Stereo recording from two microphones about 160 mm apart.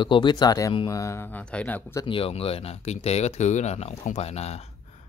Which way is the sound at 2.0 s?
35° left (ahead or behind).